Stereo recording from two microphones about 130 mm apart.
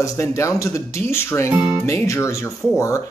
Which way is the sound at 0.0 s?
25° left (ahead or behind).